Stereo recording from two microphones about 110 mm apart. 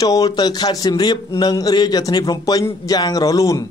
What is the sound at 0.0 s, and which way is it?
Speech, 35° left (ahead or behind).